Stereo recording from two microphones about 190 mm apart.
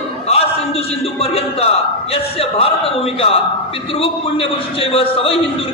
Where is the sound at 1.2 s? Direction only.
30° left (ahead or behind).